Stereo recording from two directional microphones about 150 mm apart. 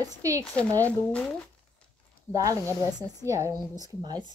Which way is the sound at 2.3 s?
20° right (ahead or behind).